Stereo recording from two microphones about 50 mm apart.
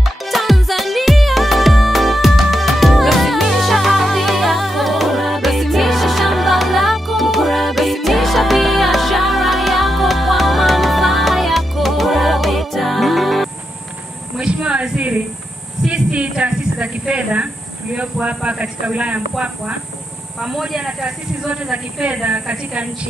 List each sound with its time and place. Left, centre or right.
0.0 s music: centre
14.4 s a sound: right
18.2 s speech: right
20.4 s speech: centre; by 22.8 s right